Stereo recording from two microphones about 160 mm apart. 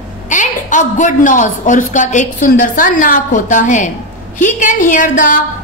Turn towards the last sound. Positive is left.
turn(degrees=55)  # may be behind; listen again after turning